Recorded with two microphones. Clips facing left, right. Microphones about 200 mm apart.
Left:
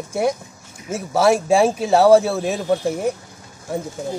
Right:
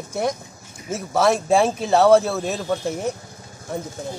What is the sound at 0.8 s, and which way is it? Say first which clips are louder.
Speech: left 2 dB; 10° left (ahead or behind).